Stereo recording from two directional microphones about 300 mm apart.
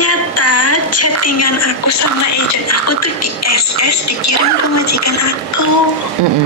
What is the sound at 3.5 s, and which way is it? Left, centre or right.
Speech, left.